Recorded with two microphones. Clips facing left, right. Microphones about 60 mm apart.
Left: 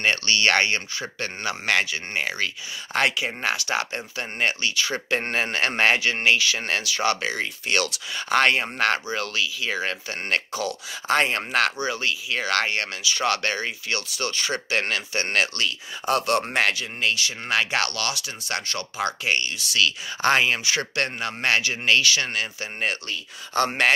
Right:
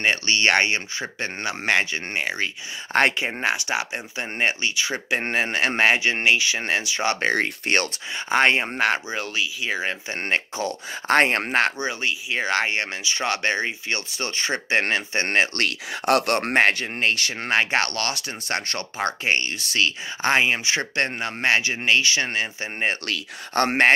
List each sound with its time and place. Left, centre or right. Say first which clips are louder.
0.0 s speech: right 1 dB; centre
2.9 s speech: right 3 dB; right
3.3 s speech: right 2 dB; centre
7.2 s speech: right 5 dB; right
8.3 s speech: right 1 dB; right
11.1 s speech: right 3 dB; right
11.5 s speech: right 1 dB; right
15.5 s speech: right 3 dB; right
16.7 s speech: right 2 dB; right
20.2 s speech: even; centre
23.5 s speech: right 3 dB; right